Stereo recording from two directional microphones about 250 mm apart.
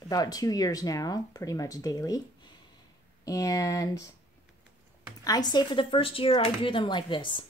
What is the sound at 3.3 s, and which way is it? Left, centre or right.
Speech, centre.